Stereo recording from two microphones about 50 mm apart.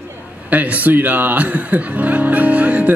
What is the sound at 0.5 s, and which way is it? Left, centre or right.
Speech, right.